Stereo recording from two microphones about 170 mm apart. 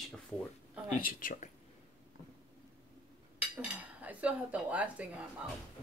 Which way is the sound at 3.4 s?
5° right (ahead or behind).